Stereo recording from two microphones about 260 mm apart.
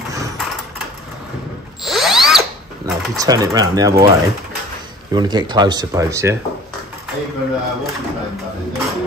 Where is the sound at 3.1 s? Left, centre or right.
Centre.